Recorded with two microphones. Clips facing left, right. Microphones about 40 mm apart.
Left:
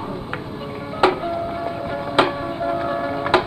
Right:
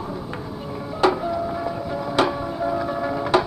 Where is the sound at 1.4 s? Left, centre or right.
Left.